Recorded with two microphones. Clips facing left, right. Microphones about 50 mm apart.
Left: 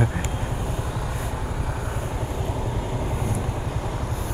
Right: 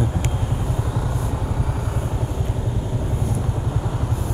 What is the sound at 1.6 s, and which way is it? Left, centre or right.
Vehicle, left.